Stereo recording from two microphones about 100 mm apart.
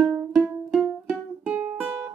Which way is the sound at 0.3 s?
5° right (ahead or behind).